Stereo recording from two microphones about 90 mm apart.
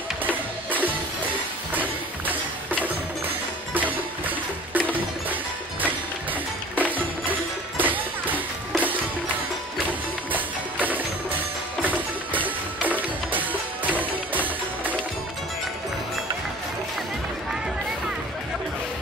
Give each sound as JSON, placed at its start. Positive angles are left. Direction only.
{"t": 0.7, "sound": "music", "side_deg": -20}
{"t": 10.3, "sound": "music", "side_deg": -20}